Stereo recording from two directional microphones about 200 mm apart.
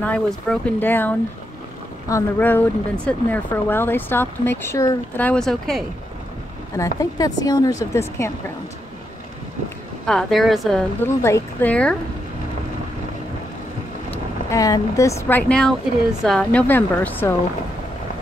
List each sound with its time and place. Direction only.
0.0 s speech: 5° left (ahead or behind)
7.0 s speech: 20° left (ahead or behind)
10.0 s a woman's voice: centre (ahead or behind)
11.1 s speech: 15° left (ahead or behind)
14.1 s speech: 15° left (ahead or behind)